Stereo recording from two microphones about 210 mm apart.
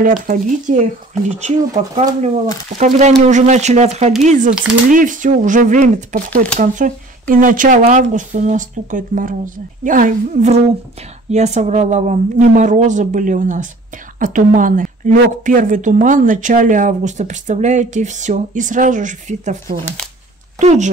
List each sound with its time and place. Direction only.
0.0 s speech: 35° right (ahead or behind)
2.2 s speech: 35° right (ahead or behind)